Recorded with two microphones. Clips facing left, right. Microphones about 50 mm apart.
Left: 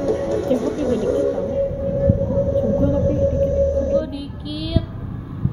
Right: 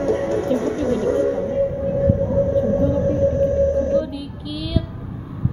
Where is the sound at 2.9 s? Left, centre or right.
Right.